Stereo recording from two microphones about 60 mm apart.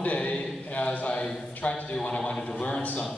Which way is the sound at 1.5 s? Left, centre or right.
Left.